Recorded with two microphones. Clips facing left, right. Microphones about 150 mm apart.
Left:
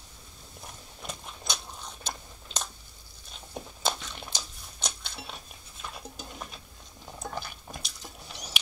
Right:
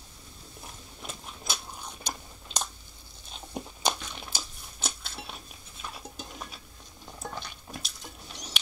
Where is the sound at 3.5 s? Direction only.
15° right (ahead or behind).